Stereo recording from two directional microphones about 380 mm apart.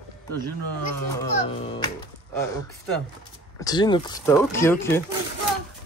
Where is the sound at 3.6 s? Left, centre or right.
Centre.